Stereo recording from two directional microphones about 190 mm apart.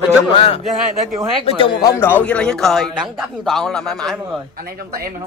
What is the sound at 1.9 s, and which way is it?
A man's voice, 10° left (ahead or behind).